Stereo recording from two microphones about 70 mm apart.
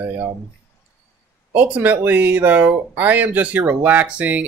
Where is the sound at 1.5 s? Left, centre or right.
Right.